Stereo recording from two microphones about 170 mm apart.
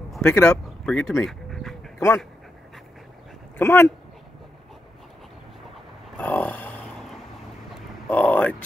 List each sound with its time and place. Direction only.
0.2 s speech: 15° left (ahead or behind)
1.2 s dog: centre (ahead or behind)
2.0 s speech: 15° left (ahead or behind)
3.5 s speech: 15° left (ahead or behind)
6.1 s a sound: 10° left (ahead or behind)
8.1 s vehicle: 10° left (ahead or behind)